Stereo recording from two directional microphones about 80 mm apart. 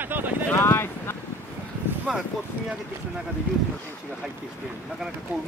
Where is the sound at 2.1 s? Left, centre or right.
Centre.